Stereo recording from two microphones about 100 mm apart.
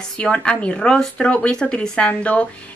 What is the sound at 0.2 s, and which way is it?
A woman's voice, 10° left (ahead or behind).